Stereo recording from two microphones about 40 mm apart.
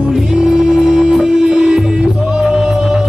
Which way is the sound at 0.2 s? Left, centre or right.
Centre.